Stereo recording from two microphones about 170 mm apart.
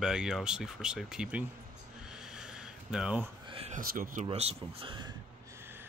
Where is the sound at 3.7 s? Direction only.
55° right (ahead or behind).